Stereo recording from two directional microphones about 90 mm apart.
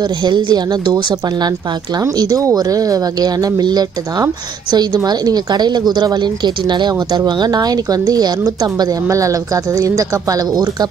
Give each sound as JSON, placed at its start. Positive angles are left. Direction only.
{"t": 0.0, "sound": "a woman's voice", "side_deg": -55}